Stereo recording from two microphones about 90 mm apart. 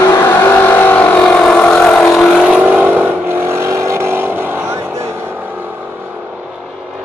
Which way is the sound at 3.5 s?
30° right (ahead or behind).